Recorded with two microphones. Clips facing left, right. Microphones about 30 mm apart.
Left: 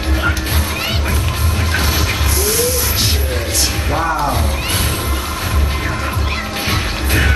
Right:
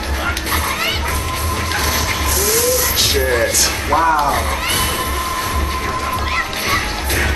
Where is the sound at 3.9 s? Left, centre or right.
Centre.